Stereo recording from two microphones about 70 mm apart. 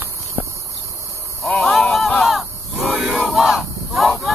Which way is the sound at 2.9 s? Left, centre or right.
Centre.